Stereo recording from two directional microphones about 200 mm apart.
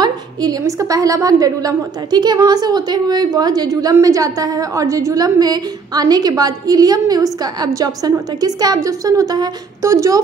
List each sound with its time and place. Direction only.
0.0 s a woman's voice: 20° right (ahead or behind)